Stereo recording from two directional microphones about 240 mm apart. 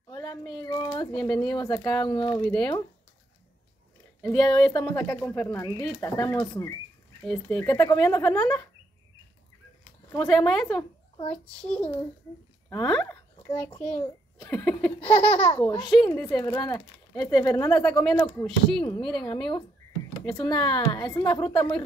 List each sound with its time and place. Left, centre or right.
0.1 s a child's voice: centre
2.4 s speech: centre
4.2 s speech: centre
4.7 s a child's voice: centre
5.0 s a child's voice: centre
7.2 s a child's voice: centre
10.1 s speech: centre
10.7 s a child's voice: centre
11.3 s a child's voice: centre
20.2 s a child's voice: centre